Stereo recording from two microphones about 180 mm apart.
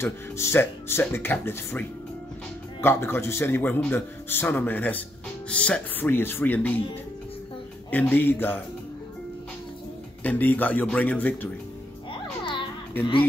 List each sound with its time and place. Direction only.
0.0 s a man's voice: 15° left (ahead or behind)
7.9 s a man's voice: 10° left (ahead or behind)
10.2 s a man's voice: 10° left (ahead or behind)